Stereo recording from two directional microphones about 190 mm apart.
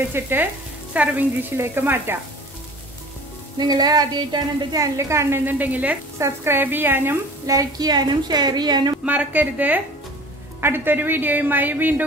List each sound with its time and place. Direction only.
0.1 s a woman's voice: 10° right (ahead or behind)
3.5 s a woman's voice: 20° right (ahead or behind)
9.0 s a woman's voice: 10° right (ahead or behind)